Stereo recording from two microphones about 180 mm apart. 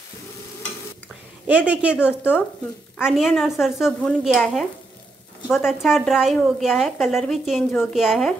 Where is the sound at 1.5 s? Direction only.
5° right (ahead or behind).